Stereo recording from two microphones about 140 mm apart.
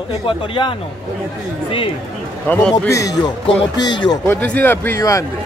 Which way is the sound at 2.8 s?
25° left (ahead or behind).